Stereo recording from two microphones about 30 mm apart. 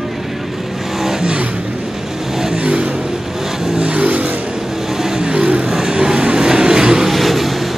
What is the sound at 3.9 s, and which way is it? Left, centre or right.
Vehicle, right.